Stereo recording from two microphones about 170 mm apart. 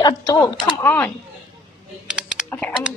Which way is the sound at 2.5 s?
10° left (ahead or behind).